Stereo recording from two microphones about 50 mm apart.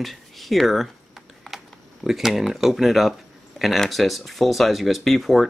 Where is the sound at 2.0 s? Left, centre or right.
Centre.